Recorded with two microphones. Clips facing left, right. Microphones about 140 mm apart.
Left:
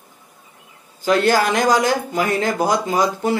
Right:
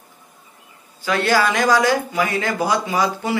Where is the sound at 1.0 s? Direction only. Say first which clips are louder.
Left 2 dB; 45° left (ahead or behind).